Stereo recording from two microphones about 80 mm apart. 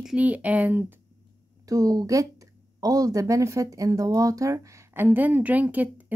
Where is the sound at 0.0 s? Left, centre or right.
Centre.